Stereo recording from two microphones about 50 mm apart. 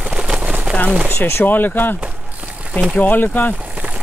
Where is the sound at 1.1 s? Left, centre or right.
Left.